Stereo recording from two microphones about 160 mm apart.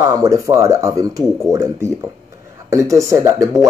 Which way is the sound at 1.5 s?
20° right (ahead or behind).